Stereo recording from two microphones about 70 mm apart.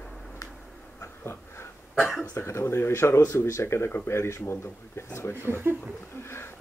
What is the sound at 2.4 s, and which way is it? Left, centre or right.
Speech, left.